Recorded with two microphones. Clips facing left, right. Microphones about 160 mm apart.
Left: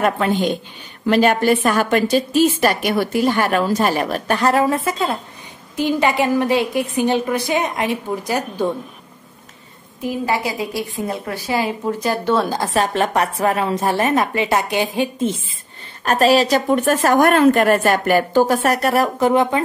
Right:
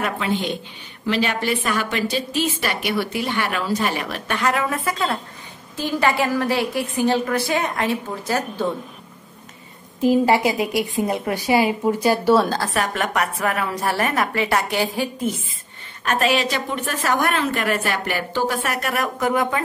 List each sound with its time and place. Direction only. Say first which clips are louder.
0.0 s a woman's voice: left 6 dB; 50° left (ahead or behind); by 8.6 s 15° left (ahead or behind)
10.0 s a woman's voice: right 5 dB; 25° right (ahead or behind); by 12.4 s 10° right (ahead or behind)
12.4 s a woman's voice: left 3 dB; 20° left (ahead or behind)
16.0 s a woman's voice: left 6 dB; 35° left (ahead or behind)